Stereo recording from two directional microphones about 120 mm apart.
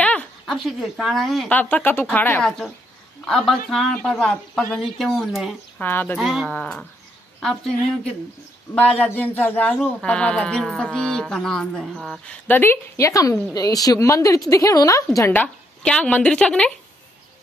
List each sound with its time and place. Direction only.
0.0 s a sound: 10° left (ahead or behind)
0.5 s speech: centre (ahead or behind)
1.5 s speech: 15° left (ahead or behind)
3.3 s speech: centre (ahead or behind)
5.8 s speech: 15° left (ahead or behind)
6.1 s speech: centre (ahead or behind)
6.4 s speech: 10° left (ahead or behind)
12.4 s a woman's voice: 20° left (ahead or behind)
15.1 s speech: 15° left (ahead or behind)